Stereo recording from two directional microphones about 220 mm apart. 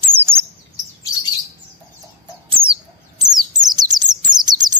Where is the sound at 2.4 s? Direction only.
25° right (ahead or behind).